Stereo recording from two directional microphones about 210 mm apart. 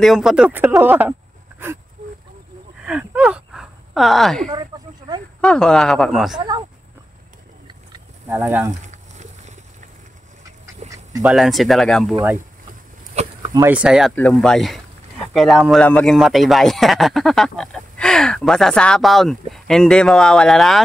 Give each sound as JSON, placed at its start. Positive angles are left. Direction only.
{"t": 0.0, "sound": "speech", "side_deg": 0}
{"t": 2.8, "sound": "gasp", "side_deg": -5}
{"t": 4.5, "sound": "a sound", "side_deg": -20}
{"t": 5.4, "sound": "a man's voice", "side_deg": 5}
{"t": 8.3, "sound": "speech", "side_deg": -10}
{"t": 8.8, "sound": "a sound", "side_deg": -35}
{"t": 10.8, "sound": "dog", "side_deg": -35}
{"t": 11.2, "sound": "a man's voice", "side_deg": 0}
{"t": 13.1, "sound": "a sound", "side_deg": -30}
{"t": 13.5, "sound": "a man's voice", "side_deg": -10}